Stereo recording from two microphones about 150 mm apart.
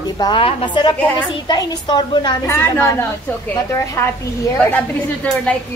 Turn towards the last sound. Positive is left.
turn(degrees=10)  # may be behind; listen again after turning